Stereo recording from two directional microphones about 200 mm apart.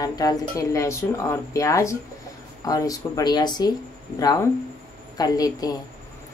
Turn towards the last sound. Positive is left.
turn(degrees=20)  # may be behind; listen again after turning